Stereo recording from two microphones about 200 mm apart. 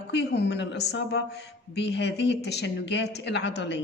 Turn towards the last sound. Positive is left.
turn(degrees=60)  # may be behind; listen again after turning